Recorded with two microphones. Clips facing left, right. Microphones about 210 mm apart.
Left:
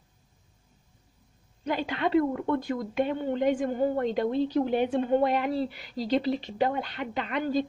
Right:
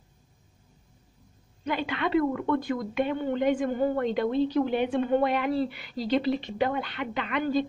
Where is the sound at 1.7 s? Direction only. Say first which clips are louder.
Left 1 dB; 40° left (ahead or behind).